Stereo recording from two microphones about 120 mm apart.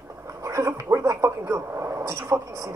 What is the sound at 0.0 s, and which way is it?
Speech, 25° right (ahead or behind).